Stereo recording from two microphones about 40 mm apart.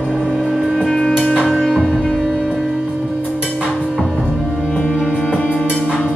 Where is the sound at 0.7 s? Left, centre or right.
Centre.